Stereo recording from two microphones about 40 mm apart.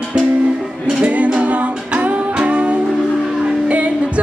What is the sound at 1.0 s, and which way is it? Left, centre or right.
Music, right.